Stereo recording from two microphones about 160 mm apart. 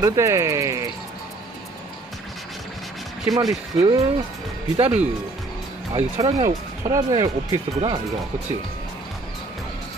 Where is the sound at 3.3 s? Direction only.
20° right (ahead or behind).